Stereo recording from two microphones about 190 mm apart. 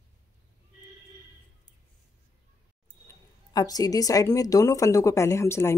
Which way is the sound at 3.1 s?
20° left (ahead or behind).